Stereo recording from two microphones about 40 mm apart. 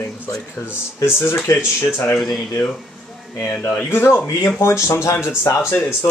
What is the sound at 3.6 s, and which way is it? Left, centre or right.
Speech, left.